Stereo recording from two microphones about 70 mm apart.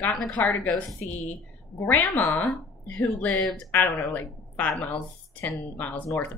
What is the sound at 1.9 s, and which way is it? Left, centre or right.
A woman's voice, left.